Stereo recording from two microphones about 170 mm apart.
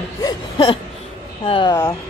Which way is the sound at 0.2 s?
25° left (ahead or behind).